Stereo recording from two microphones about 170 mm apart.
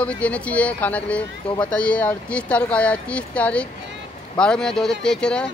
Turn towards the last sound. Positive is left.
turn(degrees=5)  # may be behind; listen again after turning